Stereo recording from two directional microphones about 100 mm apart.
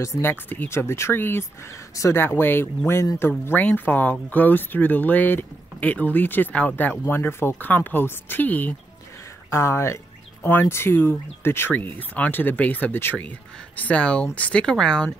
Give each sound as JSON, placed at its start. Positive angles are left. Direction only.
{"t": 0.0, "sound": "speech", "side_deg": 20}